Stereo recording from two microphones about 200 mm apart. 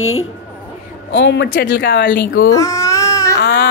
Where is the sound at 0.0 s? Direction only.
90° left.